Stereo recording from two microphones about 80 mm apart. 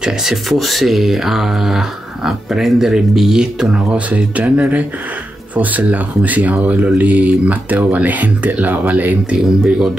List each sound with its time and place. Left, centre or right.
0.0 s speech: centre; by 9.4 s right
9.6 s speech: centre